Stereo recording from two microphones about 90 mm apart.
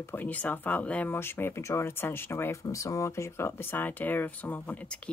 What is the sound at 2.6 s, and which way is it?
Speech, 40° left (ahead or behind).